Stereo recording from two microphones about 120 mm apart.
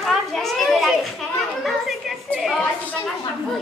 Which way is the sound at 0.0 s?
Centre (ahead or behind).